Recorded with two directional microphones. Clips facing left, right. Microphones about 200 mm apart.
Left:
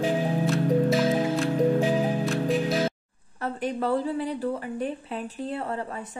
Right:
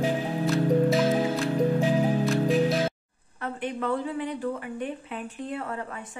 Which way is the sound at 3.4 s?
35° left (ahead or behind).